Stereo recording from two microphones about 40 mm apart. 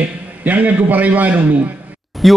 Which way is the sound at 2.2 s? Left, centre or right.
Centre.